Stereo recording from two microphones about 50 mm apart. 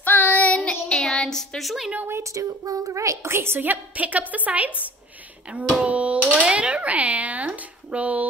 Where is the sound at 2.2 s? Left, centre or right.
Right.